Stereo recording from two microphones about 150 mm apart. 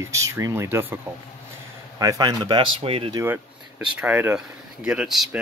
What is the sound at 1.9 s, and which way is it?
Speech, 25° right (ahead or behind).